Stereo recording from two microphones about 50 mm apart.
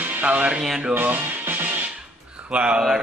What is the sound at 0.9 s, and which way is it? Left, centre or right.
Music, right.